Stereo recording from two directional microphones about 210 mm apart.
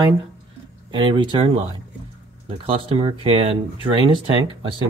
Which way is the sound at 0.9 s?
25° right (ahead or behind).